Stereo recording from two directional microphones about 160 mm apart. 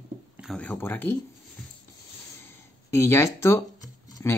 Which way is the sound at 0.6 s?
10° left (ahead or behind).